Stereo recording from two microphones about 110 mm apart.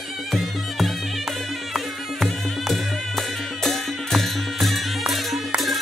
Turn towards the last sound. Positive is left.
turn(degrees=0)  # may be behind; listen again after turning